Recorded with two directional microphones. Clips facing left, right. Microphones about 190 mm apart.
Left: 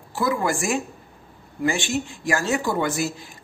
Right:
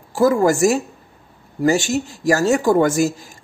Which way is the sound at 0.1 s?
45° right (ahead or behind).